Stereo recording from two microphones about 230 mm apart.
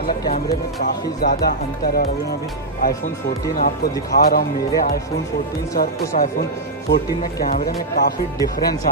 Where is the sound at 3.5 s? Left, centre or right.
Left.